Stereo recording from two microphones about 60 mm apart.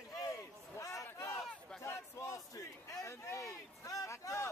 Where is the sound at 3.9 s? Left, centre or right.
Left.